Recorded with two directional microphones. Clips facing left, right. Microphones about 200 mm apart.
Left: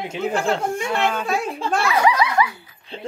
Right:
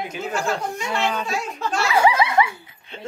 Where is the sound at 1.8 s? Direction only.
30° right (ahead or behind).